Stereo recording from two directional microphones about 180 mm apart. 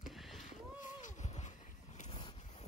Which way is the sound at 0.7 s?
45° left (ahead or behind).